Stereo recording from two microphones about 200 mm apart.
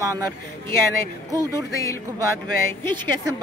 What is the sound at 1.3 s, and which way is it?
Speech, 15° right (ahead or behind).